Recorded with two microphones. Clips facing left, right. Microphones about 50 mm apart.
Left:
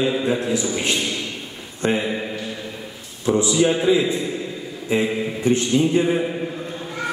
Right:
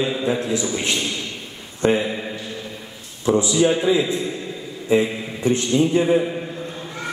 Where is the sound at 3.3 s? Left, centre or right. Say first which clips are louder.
Right 1 dB; centre.